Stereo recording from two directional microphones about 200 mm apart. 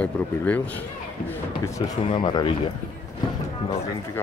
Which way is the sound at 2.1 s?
25° left (ahead or behind).